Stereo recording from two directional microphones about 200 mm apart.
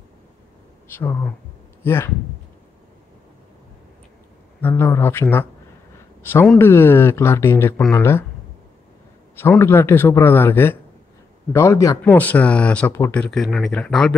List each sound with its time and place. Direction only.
0.9 s speech: 10° left (ahead or behind)
4.6 s speech: 10° left (ahead or behind)
9.3 s speech: 10° left (ahead or behind)